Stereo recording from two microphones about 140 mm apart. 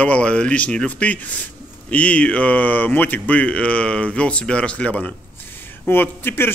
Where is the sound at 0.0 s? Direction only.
10° left (ahead or behind).